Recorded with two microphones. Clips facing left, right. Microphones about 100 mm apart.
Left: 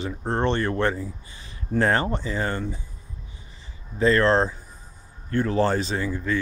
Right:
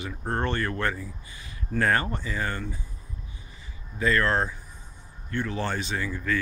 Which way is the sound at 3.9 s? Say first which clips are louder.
Left 5 dB; 30° left (ahead or behind).